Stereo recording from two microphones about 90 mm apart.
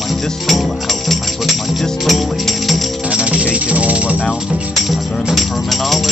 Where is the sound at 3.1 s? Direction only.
10° right (ahead or behind).